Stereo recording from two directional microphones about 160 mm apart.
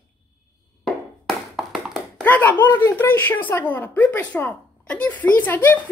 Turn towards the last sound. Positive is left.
turn(degrees=10)  # may be behind; listen again after turning